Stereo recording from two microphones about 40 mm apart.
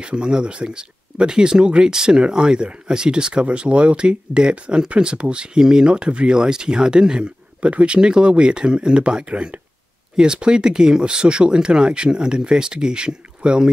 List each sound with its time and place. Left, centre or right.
0.0 s speech: right